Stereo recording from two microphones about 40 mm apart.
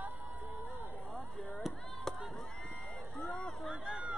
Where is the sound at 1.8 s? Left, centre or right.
Centre.